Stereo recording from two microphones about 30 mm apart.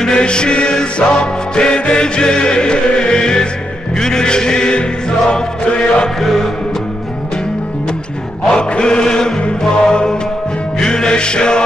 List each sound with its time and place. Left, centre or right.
0.0 s music: left
6.2 s music: centre
8.5 s chant: left
9.6 s music: left